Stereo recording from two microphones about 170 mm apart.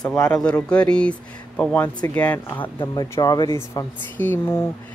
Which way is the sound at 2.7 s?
25° left (ahead or behind).